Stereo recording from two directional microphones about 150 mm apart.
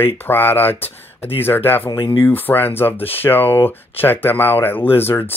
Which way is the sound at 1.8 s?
30° left (ahead or behind).